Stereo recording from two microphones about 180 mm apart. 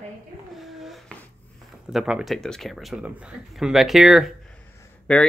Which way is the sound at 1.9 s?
5° right (ahead or behind).